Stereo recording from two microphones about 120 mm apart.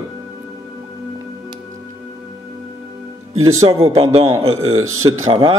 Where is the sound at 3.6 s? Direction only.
50° right (ahead or behind).